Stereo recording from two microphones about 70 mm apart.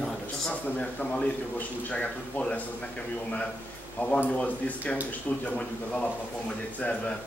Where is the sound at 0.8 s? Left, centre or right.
Centre.